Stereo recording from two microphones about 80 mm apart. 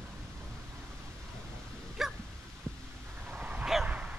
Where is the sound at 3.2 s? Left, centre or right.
Centre.